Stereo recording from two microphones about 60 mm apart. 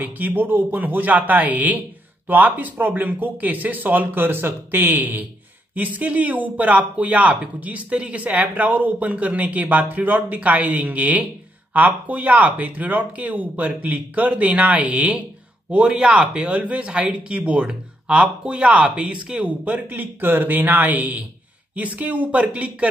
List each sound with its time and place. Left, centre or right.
0.0 s speech: right